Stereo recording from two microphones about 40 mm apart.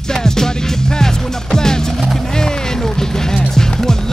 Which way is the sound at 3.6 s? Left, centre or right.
Centre.